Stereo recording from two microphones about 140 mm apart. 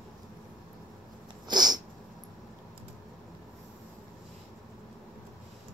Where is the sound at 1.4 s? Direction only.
30° right (ahead or behind).